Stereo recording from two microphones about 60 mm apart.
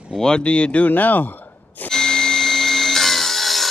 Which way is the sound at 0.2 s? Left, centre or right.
Centre.